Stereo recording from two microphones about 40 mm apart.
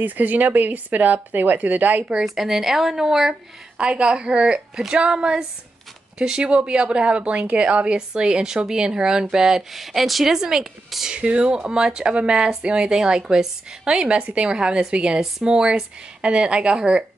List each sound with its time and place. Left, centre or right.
0.0 s speech: right
2.2 s speech: centre
3.7 s speech: right
9.8 s speech: centre
11.1 s speech: right